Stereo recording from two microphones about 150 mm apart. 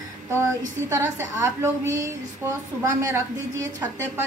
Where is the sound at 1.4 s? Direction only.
20° right (ahead or behind).